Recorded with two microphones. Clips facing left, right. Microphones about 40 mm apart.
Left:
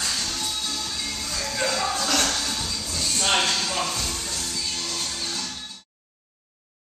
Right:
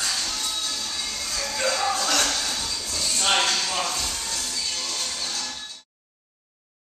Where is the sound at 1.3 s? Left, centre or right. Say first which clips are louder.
Right 1 dB; centre.